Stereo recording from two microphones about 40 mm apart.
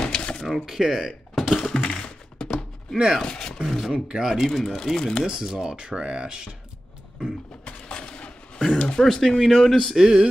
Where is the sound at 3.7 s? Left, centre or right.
Centre.